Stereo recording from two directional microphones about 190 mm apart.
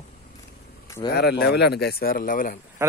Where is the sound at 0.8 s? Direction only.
15° left (ahead or behind).